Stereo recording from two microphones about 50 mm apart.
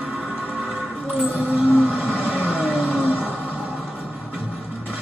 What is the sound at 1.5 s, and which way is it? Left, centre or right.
Vehicle, right.